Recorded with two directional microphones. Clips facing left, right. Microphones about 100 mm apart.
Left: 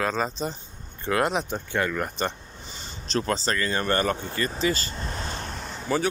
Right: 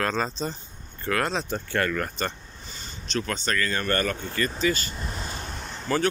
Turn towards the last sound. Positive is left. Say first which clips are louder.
# even
turn(degrees=5)  # may be behind; listen again after turning